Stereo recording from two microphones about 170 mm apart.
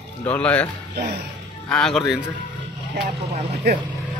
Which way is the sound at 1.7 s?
5° left (ahead or behind).